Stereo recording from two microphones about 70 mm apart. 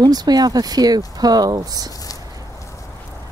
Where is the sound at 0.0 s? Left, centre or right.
Right.